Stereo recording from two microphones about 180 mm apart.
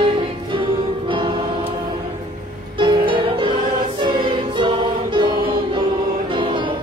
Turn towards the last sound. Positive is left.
turn(degrees=-30)  # may be behind; listen again after turning